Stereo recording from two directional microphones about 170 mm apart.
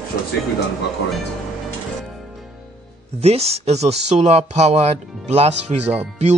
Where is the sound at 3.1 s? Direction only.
35° right (ahead or behind).